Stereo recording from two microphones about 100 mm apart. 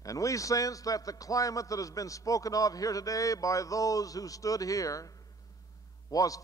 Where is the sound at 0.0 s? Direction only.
35° left (ahead or behind).